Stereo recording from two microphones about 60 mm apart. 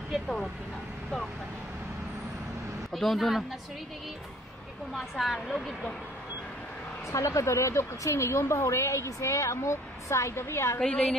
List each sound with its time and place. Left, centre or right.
2.9 s a woman's voice: centre
4.9 s a woman's voice: centre
7.1 s a woman's voice: left
10.3 s a woman's voice: left
10.8 s a woman's voice: centre